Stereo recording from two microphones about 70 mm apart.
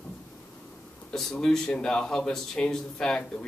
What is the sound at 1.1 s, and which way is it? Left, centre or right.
A man's voice, centre.